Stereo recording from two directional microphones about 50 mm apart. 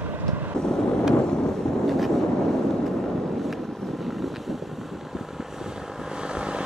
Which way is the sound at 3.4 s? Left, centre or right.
Centre.